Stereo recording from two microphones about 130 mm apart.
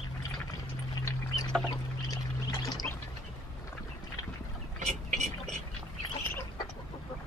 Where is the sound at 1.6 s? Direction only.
30° left (ahead or behind).